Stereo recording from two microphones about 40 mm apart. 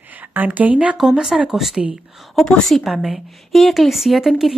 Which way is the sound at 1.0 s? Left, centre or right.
Centre.